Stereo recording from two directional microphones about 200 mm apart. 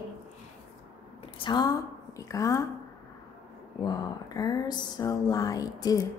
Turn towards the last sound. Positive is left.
turn(degrees=20)  # may be behind; listen again after turning